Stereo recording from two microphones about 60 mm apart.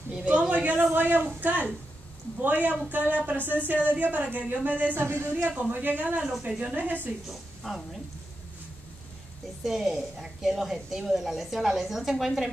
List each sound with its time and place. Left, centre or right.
0.1 s a woman's voice: right
5.0 s speech: right
5.7 s a woman's voice: right
7.2 s a woman's voice: centre
9.6 s a woman's voice: centre